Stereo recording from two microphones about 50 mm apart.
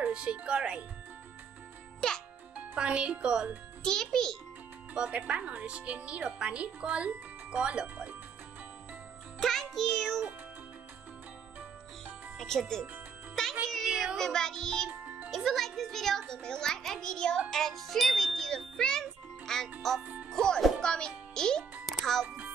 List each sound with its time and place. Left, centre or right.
0.0 s speech: right
2.0 s music: centre
2.5 s speech: right
3.8 s a child's voice: centre
4.9 s speech: right
9.4 s music: centre
12.4 s speech: centre
13.7 s music: centre
14.9 s music: right
15.3 s a child's voice: centre
21.8 s music: centre